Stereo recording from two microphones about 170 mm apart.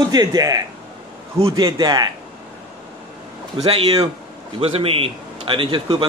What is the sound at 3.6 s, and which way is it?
A man's voice, 35° right (ahead or behind).